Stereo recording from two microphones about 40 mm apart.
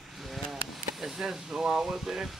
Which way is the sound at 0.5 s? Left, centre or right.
Centre.